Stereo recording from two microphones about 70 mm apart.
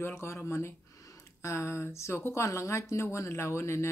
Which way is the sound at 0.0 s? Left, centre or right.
Left.